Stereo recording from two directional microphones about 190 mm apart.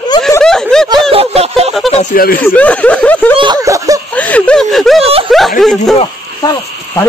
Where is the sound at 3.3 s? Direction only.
20° right (ahead or behind).